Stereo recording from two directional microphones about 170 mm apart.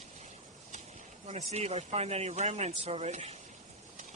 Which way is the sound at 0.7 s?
40° right (ahead or behind).